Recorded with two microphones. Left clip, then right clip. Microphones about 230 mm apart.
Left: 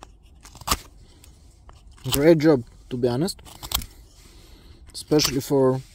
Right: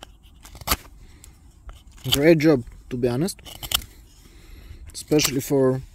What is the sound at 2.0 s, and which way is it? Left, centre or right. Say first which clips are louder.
Speech: even; centre.